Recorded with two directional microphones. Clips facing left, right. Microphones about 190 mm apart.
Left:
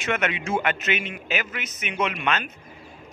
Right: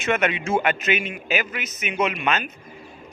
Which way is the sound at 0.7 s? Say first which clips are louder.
Right 3 dB; 10° right (ahead or behind).